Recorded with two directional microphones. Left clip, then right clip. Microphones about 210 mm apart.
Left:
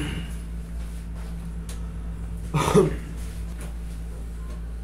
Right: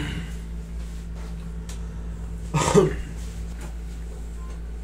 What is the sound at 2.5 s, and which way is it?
Throat clearing, 15° right (ahead or behind).